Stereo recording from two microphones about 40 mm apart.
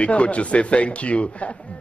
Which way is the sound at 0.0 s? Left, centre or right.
Left.